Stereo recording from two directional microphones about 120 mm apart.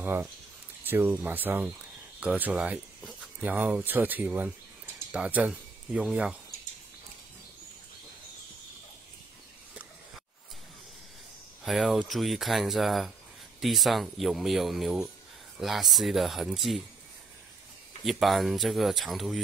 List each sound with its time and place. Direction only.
0.0 s speech: 15° right (ahead or behind)
11.6 s speech: centre (ahead or behind)
18.0 s speech: centre (ahead or behind)